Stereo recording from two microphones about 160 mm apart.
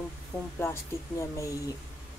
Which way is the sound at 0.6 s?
15° left (ahead or behind).